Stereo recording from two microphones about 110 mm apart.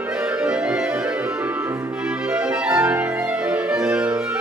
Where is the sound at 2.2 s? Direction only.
10° right (ahead or behind).